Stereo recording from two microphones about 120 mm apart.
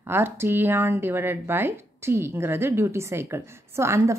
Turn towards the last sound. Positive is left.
turn(degrees=-20)  # may be behind; listen again after turning